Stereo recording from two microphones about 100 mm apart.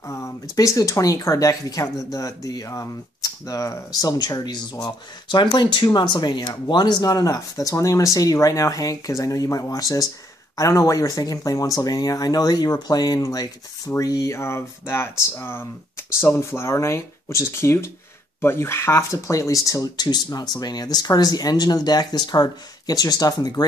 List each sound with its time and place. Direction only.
0.0 s speech: 30° left (ahead or behind)